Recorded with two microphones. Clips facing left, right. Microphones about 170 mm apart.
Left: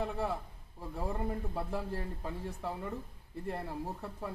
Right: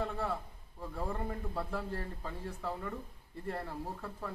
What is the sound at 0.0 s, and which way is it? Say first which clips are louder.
A man's voice: left 1 dB; 10° left (ahead or behind).